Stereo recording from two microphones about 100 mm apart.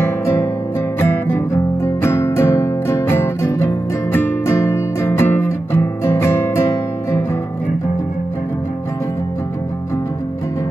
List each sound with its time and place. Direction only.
0.9 s music: 25° left (ahead or behind)